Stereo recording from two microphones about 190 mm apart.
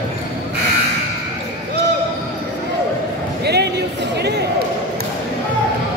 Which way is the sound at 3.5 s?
60° right (ahead or behind).